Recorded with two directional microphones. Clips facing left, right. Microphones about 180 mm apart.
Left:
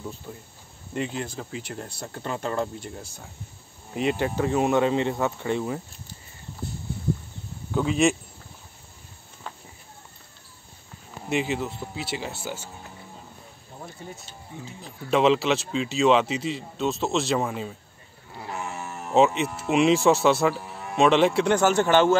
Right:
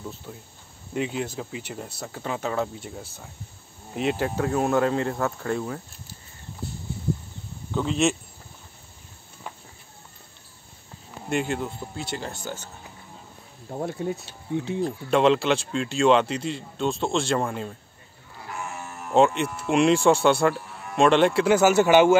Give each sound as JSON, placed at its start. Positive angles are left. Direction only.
{"t": 0.3, "sound": "speech", "side_deg": 5}
{"t": 7.7, "sound": "speech", "side_deg": 5}
{"t": 11.2, "sound": "speech", "side_deg": 0}
{"t": 13.7, "sound": "speech", "side_deg": -55}
{"t": 14.0, "sound": "speech", "side_deg": -70}
{"t": 14.8, "sound": "speech", "side_deg": 0}
{"t": 19.1, "sound": "speech", "side_deg": 0}